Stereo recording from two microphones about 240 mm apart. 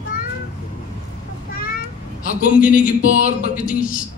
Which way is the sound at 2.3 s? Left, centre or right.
Left.